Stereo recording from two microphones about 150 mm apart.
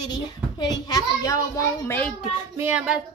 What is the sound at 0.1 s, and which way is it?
A child's voice, 30° left (ahead or behind).